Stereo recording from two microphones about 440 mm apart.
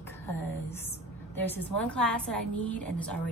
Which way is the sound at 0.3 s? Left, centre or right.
Centre.